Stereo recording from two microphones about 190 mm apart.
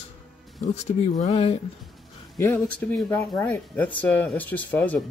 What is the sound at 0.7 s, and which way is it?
Speech, 35° left (ahead or behind).